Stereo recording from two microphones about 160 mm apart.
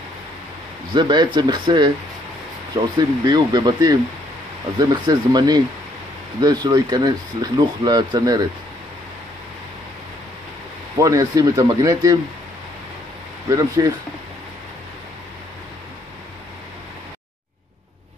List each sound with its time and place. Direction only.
0.9 s speech: 30° right (ahead or behind)
11.0 s speech: 20° right (ahead or behind)
13.5 s speech: 20° right (ahead or behind)